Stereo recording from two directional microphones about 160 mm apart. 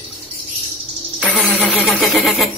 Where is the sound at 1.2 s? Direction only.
5° left (ahead or behind).